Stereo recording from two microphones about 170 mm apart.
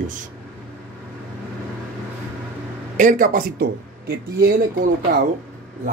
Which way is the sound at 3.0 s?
50° right (ahead or behind).